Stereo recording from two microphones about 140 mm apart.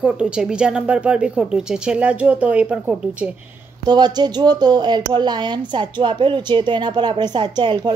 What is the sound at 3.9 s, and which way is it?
Speech, 30° right (ahead or behind).